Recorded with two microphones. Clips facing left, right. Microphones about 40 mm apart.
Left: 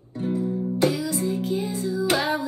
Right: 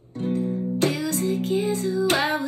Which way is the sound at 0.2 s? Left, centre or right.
Right.